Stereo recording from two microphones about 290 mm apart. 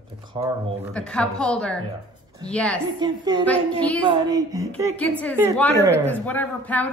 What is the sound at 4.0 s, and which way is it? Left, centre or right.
Speech, centre.